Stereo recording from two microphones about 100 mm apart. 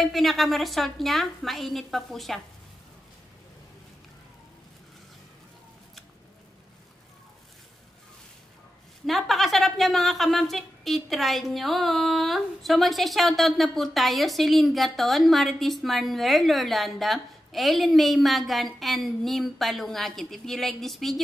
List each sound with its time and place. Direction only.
0.0 s a woman's voice: centre (ahead or behind)
9.0 s a woman's voice: centre (ahead or behind)